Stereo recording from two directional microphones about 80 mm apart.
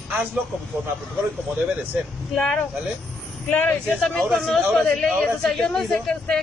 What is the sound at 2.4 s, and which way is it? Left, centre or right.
Speech, centre.